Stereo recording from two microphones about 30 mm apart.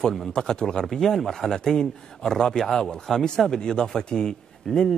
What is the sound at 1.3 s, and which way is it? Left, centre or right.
A man's voice, centre.